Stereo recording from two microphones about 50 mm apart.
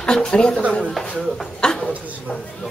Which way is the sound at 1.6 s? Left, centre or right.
Centre.